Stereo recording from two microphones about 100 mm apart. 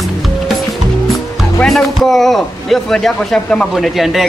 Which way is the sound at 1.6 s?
Centre (ahead or behind).